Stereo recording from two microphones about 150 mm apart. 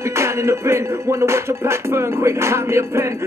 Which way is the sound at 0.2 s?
20° right (ahead or behind).